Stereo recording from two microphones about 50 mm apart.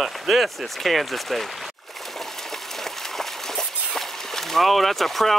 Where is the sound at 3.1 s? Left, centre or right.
Centre.